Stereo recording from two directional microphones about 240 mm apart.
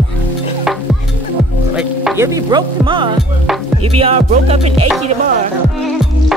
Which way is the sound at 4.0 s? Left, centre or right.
Right.